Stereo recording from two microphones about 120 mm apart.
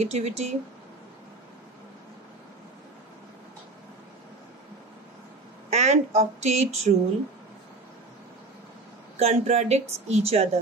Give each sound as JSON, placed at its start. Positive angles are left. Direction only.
{"t": 0.0, "sound": "speech", "side_deg": -65}
{"t": 5.7, "sound": "speech", "side_deg": -70}
{"t": 9.2, "sound": "speech", "side_deg": -60}